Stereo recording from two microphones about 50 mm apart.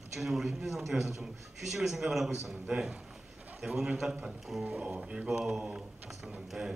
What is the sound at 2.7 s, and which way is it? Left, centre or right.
A man's voice, centre.